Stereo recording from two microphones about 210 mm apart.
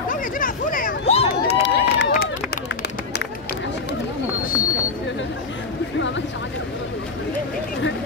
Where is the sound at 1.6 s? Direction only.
55° left (ahead or behind).